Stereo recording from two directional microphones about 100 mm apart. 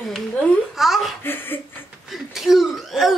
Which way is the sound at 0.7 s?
Centre (ahead or behind).